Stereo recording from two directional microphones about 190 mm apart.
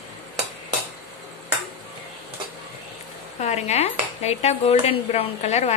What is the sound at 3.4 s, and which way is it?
Speech, 35° left (ahead or behind).